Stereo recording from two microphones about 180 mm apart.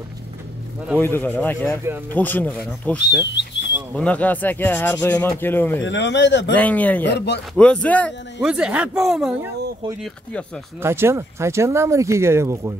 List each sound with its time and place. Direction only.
0.9 s speech: 10° left (ahead or behind)
3.1 s speech: 75° left (ahead or behind)
3.9 s speech: 5° left (ahead or behind)
5.9 s a man's voice: 85° left
6.5 s speech: 10° left (ahead or behind)
7.1 s speech: 70° left (ahead or behind)
7.5 s speech: 5° left (ahead or behind)
8.5 s speech: 5° right (ahead or behind)
10.8 s speech: 15° right (ahead or behind)